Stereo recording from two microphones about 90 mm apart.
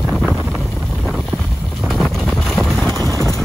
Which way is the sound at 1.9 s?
5° left (ahead or behind).